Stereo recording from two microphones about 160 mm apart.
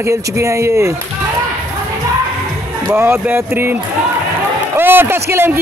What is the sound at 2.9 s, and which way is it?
Speech, 15° right (ahead or behind).